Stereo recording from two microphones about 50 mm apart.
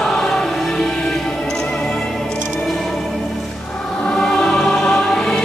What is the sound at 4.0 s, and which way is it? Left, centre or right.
Music, centre.